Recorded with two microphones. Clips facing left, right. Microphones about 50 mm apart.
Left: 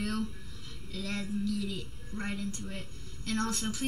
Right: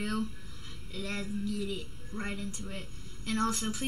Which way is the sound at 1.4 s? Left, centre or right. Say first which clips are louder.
Left 1 dB; centre.